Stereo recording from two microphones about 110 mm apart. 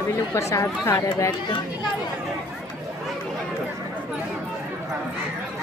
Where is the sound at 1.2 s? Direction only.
35° left (ahead or behind).